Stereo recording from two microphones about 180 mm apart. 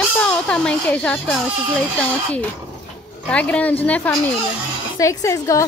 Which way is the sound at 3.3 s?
5° left (ahead or behind).